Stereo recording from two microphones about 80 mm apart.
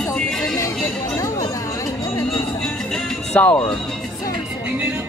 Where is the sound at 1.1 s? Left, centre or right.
Left.